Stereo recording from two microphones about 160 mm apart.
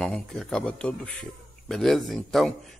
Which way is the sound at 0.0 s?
5° left (ahead or behind).